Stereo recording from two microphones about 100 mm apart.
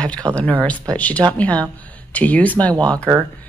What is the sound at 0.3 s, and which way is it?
A woman's voice, 15° left (ahead or behind).